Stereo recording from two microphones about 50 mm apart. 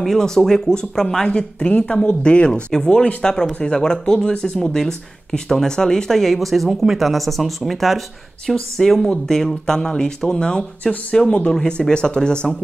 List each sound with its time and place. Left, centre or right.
0.0 s speech: centre